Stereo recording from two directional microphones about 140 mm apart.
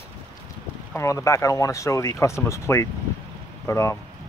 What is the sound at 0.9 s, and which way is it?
Speech, 20° left (ahead or behind).